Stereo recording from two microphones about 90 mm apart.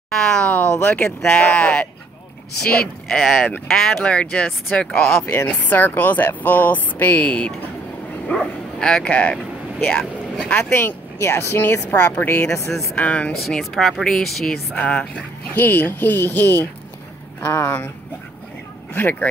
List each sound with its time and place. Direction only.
0.4 s a sound: 15° left (ahead or behind)
0.7 s speech: 15° left (ahead or behind)
4.7 s speech: 25° left (ahead or behind)
9.9 s speech: 5° left (ahead or behind)
10.5 s speech: 25° left (ahead or behind)
13.4 s speech: centre (ahead or behind)
14.7 s speech: 15° left (ahead or behind)
18.9 s speech: 20° left (ahead or behind)